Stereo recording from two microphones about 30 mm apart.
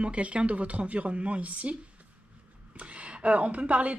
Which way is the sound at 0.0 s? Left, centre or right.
Right.